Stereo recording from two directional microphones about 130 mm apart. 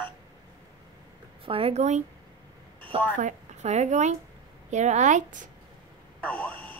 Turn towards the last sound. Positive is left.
turn(degrees=10)  # may be behind; listen again after turning